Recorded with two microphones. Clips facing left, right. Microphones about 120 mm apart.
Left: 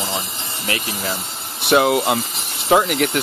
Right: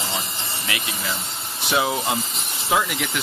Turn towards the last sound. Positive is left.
turn(degrees=55)  # may be behind; listen again after turning